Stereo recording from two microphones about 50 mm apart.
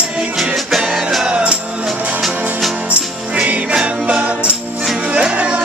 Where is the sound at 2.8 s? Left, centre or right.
Right.